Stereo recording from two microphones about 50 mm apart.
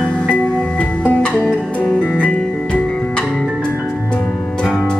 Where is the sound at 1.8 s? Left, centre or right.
Left.